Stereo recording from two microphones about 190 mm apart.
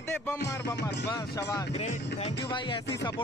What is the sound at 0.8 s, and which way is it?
Speech, 65° left (ahead or behind).